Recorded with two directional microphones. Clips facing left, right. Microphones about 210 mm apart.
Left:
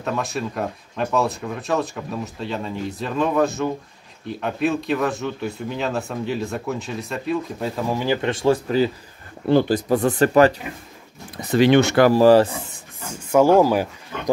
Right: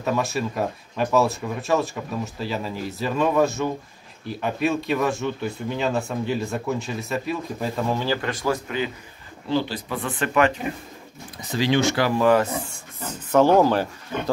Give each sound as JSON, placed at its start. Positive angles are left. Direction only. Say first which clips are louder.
{"t": 0.0, "sound": "speech", "louder": "right 1 dB", "side_deg": 0}
{"t": 7.9, "sound": "speech", "louder": "left 3 dB", "side_deg": 15}
{"t": 9.5, "sound": "speech", "louder": "left 8 dB", "side_deg": 50}
{"t": 11.4, "sound": "speech", "louder": "left 6 dB", "side_deg": 60}
{"t": 12.1, "sound": "speech", "louder": "left 5 dB", "side_deg": 35}
{"t": 13.0, "sound": "speech", "louder": "left 2 dB", "side_deg": 10}